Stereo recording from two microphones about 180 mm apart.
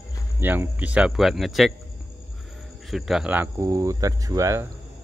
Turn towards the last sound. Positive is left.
turn(degrees=-15)  # may be behind; listen again after turning